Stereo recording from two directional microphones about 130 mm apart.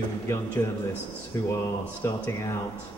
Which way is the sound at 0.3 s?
20° left (ahead or behind).